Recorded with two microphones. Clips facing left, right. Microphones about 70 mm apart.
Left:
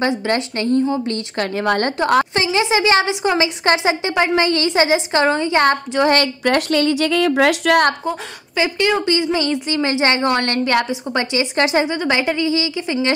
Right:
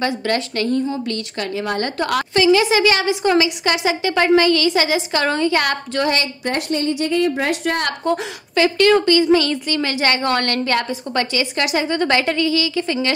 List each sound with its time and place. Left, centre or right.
0.0 s a woman's voice: left
1.9 s a woman's voice: left
3.4 s a woman's voice: left
6.1 s a woman's voice: left
8.0 s a woman's voice: centre
11.5 s a woman's voice: left
11.9 s a woman's voice: centre